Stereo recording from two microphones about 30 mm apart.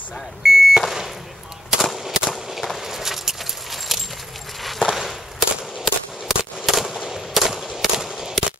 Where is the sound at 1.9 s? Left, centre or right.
Centre.